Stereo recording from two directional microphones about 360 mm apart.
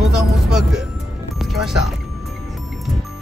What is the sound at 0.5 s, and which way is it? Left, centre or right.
Music, centre.